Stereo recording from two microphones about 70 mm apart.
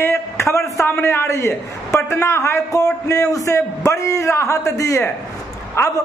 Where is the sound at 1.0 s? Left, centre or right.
Left.